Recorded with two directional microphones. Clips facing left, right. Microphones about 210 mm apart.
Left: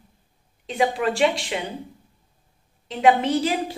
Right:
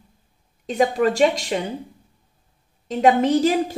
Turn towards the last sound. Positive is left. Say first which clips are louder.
# right 5 dB
turn(degrees=-45)  # may be behind; listen again after turning